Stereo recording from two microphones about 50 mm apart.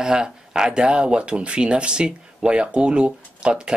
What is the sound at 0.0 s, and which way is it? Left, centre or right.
Speech, centre.